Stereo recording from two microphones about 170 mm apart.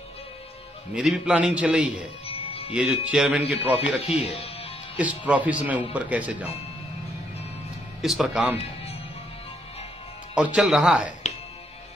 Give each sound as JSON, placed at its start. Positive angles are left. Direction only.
{"t": 0.9, "sound": "speech", "side_deg": -5}
{"t": 2.2, "sound": "music", "side_deg": 35}
{"t": 2.7, "sound": "a man's voice", "side_deg": -5}
{"t": 4.3, "sound": "speech", "side_deg": 35}
{"t": 4.9, "sound": "speech", "side_deg": -10}
{"t": 8.0, "sound": "a man's voice", "side_deg": 0}
{"t": 10.3, "sound": "speech", "side_deg": -5}